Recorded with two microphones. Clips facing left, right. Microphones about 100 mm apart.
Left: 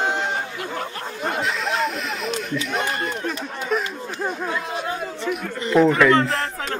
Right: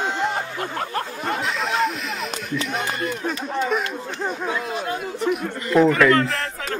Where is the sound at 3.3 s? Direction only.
Centre (ahead or behind).